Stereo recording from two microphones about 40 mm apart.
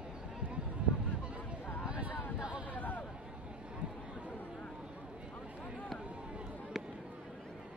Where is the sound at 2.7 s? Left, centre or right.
Left.